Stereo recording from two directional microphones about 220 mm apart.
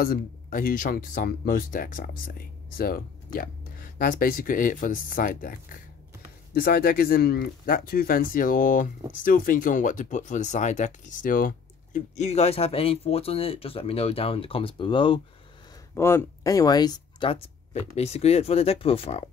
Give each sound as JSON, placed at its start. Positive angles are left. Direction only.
{"t": 0.0, "sound": "speech", "side_deg": 40}
{"t": 15.9, "sound": "speech", "side_deg": 10}